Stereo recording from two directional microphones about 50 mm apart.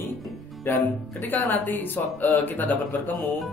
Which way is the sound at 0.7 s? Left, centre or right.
Left.